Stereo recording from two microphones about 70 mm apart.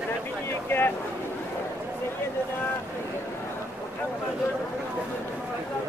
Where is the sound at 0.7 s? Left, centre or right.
Left.